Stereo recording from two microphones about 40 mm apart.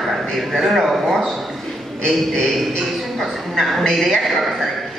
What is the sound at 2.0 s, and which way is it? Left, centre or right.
Speech, centre.